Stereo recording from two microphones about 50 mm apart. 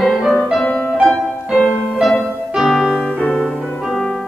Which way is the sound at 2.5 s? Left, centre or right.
Centre.